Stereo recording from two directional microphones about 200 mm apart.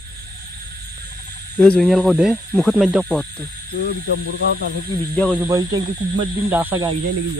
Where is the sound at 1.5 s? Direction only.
5° left (ahead or behind).